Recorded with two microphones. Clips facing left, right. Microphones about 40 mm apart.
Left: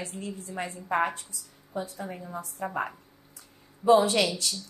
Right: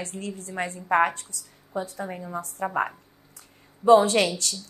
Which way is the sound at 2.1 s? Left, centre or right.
Right.